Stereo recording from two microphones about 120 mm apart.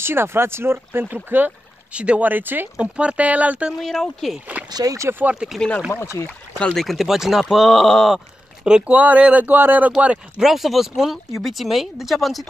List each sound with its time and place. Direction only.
0.0 s speech: 20° right (ahead or behind)
3.8 s speech: centre (ahead or behind)
4.6 s speech: 30° right (ahead or behind)
5.2 s speech: 5° right (ahead or behind)
5.9 s speech: 20° left (ahead or behind)
6.6 s speech: 5° left (ahead or behind)